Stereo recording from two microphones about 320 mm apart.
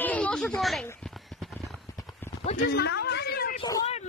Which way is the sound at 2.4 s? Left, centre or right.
Left.